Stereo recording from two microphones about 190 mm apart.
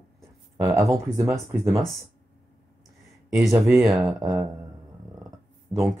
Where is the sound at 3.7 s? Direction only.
Centre (ahead or behind).